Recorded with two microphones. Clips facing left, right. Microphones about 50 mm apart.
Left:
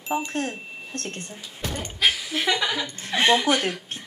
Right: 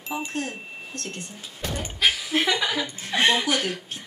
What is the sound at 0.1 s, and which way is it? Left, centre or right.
Speech, left.